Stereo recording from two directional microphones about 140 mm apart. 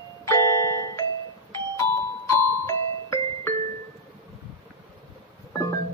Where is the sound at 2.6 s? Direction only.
20° left (ahead or behind).